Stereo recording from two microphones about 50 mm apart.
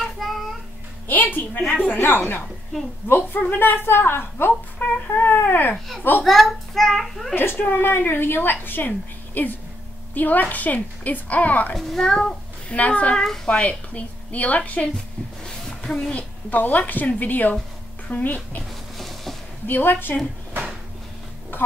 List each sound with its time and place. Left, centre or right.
0.0 s child singing: centre
1.0 s a woman's voice: left
6.2 s a child's voice: centre
7.3 s a woman's voice: left
11.7 s a child's voice: centre
12.6 s a woman's voice: left
13.1 s a child's voice: centre
13.5 s a woman's voice: left
15.4 s a sound: centre
16.1 s a woman's voice: left
18.9 s a sound: centre
19.7 s a woman's voice: left